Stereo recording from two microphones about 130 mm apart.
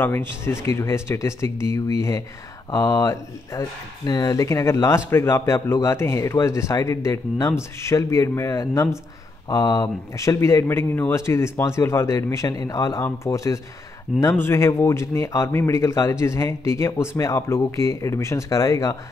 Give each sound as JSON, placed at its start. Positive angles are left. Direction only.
{"t": 0.0, "sound": "speech", "side_deg": 20}